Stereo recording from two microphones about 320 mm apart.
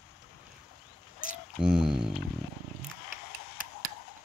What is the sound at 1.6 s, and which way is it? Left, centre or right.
Speech, centre.